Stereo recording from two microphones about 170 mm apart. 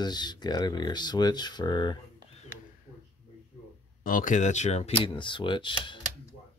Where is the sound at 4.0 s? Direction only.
55° left (ahead or behind); by 5.9 s 30° left (ahead or behind).